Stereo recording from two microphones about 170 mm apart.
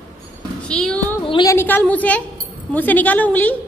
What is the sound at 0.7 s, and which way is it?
Speech, 5° left (ahead or behind).